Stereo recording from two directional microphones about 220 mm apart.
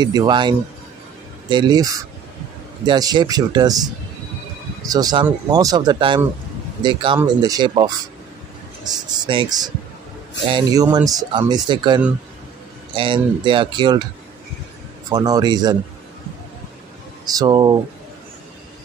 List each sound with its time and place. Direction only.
0.0 s a man's voice: 20° right (ahead or behind)
15.0 s speech: 15° right (ahead or behind)
17.2 s speech: 15° right (ahead or behind)